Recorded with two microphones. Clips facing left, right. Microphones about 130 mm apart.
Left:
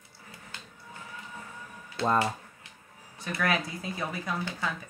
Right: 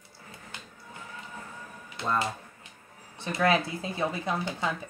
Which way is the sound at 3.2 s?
25° right (ahead or behind).